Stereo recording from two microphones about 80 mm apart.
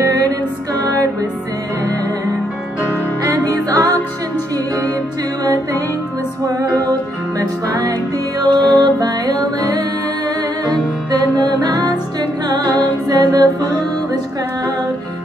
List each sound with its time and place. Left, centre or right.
0.0 s music: right
3.3 s music: right
5.4 s music: right
6.9 s music: right